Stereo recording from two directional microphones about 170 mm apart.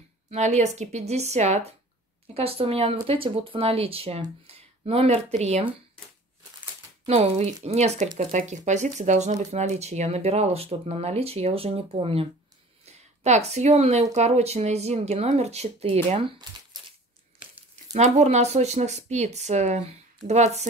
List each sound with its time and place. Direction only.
0.3 s speech: 40° right (ahead or behind)
7.1 s speech: 40° right (ahead or behind)
17.9 s speech: 40° right (ahead or behind)